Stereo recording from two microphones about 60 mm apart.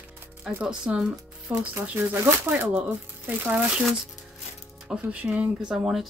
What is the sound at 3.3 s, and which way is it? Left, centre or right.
Speech, right.